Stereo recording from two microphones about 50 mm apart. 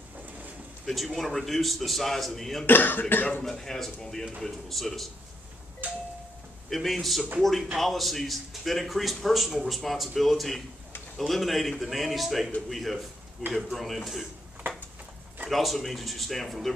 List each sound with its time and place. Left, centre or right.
0.8 s a man's voice: centre
2.6 s speech: left
3.4 s a man's voice: centre
5.8 s doorbell: right
6.7 s a man's voice: centre
13.4 s speech: centre
13.7 s a man's voice: centre
15.5 s a man's voice: centre